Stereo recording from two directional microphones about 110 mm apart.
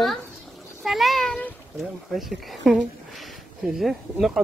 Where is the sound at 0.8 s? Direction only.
Centre (ahead or behind).